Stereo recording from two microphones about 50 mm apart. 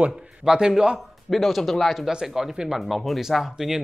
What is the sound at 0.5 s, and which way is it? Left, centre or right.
Speech, centre.